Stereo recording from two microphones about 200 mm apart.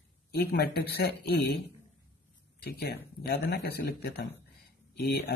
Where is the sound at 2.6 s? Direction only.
50° left (ahead or behind).